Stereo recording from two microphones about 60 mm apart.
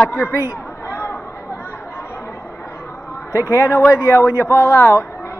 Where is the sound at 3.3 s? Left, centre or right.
Left.